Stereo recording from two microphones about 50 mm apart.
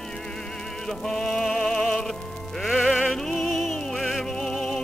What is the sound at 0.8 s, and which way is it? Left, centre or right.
Music, centre.